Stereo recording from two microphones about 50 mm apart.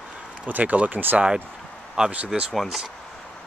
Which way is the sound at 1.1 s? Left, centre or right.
Centre.